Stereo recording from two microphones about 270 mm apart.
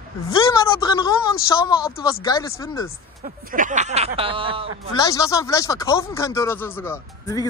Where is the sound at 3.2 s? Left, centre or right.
Right.